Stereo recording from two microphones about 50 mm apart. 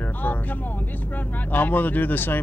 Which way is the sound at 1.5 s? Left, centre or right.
Left.